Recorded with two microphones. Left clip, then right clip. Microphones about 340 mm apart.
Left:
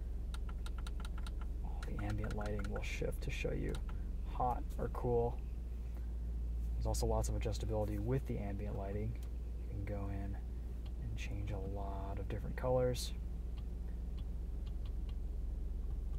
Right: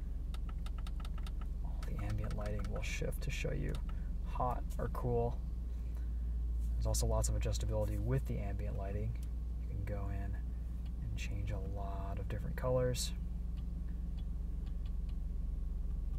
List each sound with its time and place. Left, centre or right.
2.0 s speech: centre
6.8 s speech: centre